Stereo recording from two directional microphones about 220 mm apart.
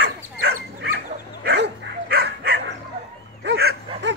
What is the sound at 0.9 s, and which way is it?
Dog, 50° right (ahead or behind).